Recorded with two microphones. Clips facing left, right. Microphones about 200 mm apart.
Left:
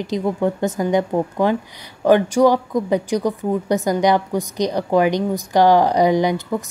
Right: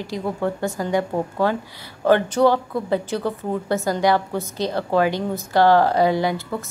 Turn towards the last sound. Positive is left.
turn(degrees=15)  # may be behind; listen again after turning